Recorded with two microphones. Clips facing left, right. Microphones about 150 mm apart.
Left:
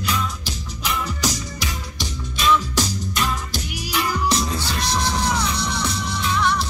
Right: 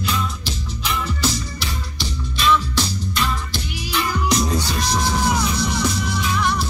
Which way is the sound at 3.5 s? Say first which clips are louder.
Right 1 dB; 40° left (ahead or behind).